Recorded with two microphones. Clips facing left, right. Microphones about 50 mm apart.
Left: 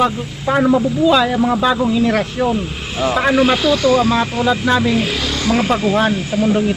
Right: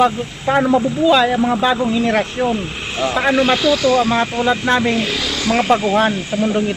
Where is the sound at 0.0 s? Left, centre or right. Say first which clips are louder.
Right 1 dB; centre.